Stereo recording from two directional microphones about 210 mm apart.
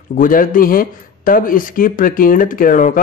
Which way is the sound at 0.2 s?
40° left (ahead or behind).